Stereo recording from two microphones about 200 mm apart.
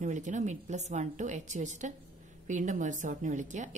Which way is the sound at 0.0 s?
40° right (ahead or behind).